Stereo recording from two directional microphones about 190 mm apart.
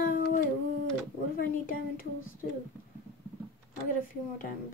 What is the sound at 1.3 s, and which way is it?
Speech, 50° left (ahead or behind).